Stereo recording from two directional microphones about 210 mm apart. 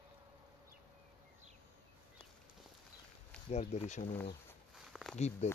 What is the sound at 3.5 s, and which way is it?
Speech, 35° left (ahead or behind).